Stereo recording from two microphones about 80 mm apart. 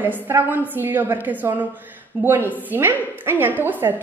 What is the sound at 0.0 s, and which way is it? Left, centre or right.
A woman's voice, right.